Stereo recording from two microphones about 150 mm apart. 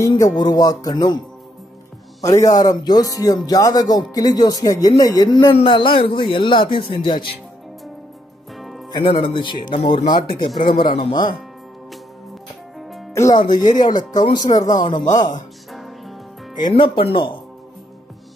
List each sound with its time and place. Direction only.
0.0 s speech: 20° left (ahead or behind)
2.2 s a man's voice: 25° left (ahead or behind)
8.5 s music: centre (ahead or behind)
8.9 s a man's voice: 35° left (ahead or behind)
10.6 s speech: 65° left (ahead or behind)
13.1 s speech: 20° left (ahead or behind)
14.6 s speech: 55° left (ahead or behind)
15.7 s music: centre (ahead or behind)
16.5 s a man's voice: 30° left (ahead or behind)